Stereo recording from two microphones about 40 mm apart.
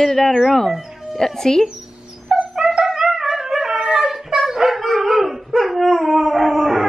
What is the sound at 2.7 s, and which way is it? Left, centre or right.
Music, centre.